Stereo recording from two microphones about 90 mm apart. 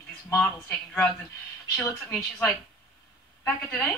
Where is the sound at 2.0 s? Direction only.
5° left (ahead or behind).